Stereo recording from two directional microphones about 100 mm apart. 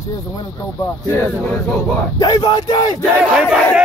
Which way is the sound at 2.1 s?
45° left (ahead or behind).